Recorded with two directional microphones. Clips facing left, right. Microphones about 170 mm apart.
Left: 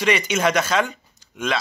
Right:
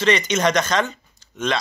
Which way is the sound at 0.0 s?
10° left (ahead or behind).